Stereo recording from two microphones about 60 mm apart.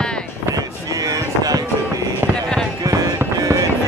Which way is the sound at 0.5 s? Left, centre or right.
Right.